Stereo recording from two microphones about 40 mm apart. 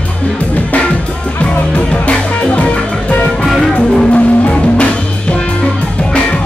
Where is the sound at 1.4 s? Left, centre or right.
Left.